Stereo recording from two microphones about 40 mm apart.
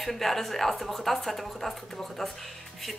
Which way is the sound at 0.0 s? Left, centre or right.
Centre.